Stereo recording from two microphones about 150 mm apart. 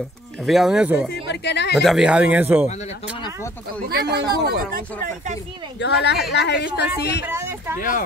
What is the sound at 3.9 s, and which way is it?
Speech, 90° right.